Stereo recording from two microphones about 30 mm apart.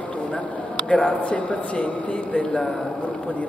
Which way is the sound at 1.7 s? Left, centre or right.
Left.